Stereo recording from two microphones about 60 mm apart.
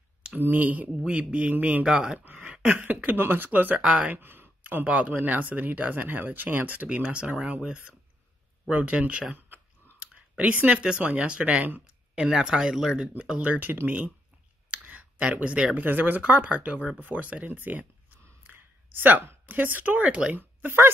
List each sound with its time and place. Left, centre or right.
0.4 s speech: right
1.9 s speech: centre
2.1 s a sound: right
2.4 s speech: right
3.8 s speech: centre
4.1 s a sound: right
4.8 s speech: right
9.9 s a sound: centre
10.8 s speech: centre
13.4 s speech: right
14.7 s a sound: right
15.8 s speech: right
16.2 s a woman's voice: right
20.3 s speech: right